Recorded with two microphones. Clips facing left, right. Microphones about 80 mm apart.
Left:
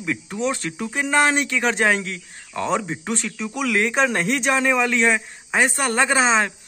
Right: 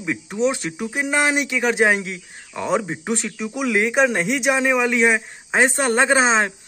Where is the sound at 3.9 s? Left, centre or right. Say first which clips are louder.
Right 2 dB; centre.